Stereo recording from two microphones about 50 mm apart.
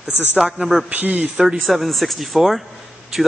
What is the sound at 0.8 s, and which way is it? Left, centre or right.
Speech, right.